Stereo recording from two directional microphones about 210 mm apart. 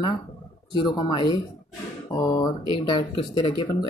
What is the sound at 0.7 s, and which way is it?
Speech, 20° left (ahead or behind).